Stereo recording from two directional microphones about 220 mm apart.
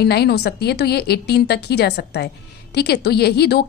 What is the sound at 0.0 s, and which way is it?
A woman's voice, 45° left (ahead or behind).